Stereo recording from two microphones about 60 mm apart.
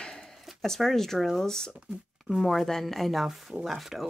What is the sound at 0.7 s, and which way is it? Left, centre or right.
Speech, centre.